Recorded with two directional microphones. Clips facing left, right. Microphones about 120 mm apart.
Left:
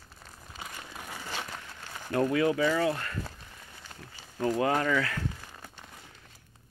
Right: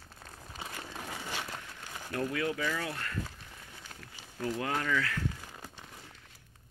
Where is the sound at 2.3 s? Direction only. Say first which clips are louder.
Left 8 dB; 15° left (ahead or behind).